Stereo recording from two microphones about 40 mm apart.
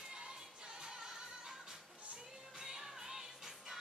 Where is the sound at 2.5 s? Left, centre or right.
Centre.